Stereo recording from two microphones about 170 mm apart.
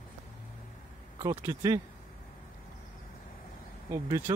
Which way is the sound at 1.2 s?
20° right (ahead or behind).